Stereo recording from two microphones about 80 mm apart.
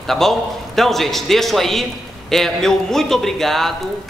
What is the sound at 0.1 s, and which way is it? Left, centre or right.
A man's voice, centre.